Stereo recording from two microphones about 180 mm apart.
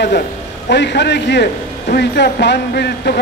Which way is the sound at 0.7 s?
75° left (ahead or behind).